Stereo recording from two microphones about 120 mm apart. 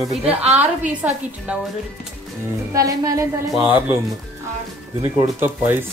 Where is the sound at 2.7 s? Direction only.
30° right (ahead or behind).